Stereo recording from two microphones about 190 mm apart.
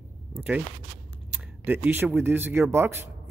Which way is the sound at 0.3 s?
10° right (ahead or behind).